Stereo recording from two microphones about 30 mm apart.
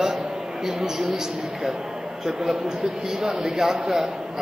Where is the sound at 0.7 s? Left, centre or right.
Centre.